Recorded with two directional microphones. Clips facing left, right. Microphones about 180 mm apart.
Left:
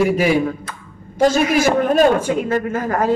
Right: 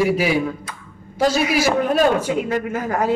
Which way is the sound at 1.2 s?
45° left (ahead or behind).